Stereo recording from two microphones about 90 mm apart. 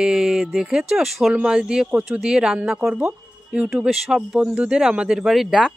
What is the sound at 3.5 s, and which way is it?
Speech, 5° right (ahead or behind).